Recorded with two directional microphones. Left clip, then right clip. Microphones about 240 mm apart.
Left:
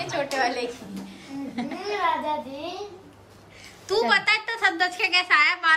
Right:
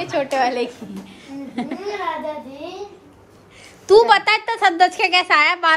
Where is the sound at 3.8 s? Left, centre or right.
Centre.